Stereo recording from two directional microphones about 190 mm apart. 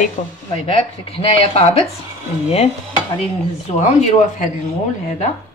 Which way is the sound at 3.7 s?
40° left (ahead or behind).